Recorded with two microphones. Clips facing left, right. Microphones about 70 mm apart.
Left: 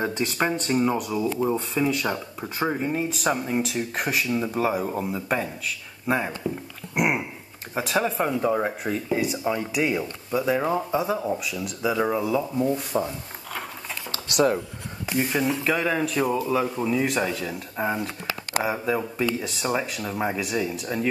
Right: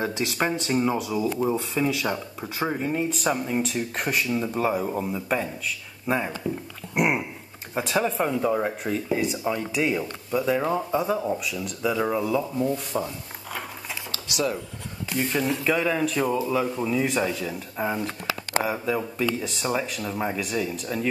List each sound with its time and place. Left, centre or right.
0.1 s speech: centre
14.3 s speech: left
15.0 s speech: centre